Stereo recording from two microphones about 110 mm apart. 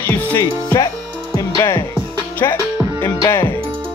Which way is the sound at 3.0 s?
20° left (ahead or behind).